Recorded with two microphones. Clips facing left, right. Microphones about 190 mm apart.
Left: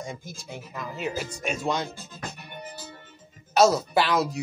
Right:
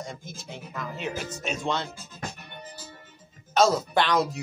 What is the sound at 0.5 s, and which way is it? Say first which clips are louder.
Speech: even; 5° left (ahead or behind).